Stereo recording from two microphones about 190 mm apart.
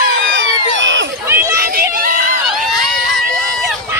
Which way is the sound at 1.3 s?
15° right (ahead or behind).